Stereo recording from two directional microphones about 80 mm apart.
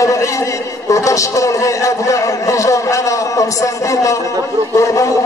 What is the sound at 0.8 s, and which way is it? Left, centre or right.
A man's voice, left.